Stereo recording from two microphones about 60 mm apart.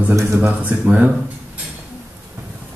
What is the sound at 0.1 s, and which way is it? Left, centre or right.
Speech, right.